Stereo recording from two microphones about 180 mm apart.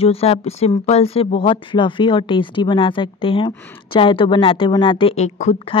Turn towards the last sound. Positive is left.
turn(degrees=35)  # may be behind; listen again after turning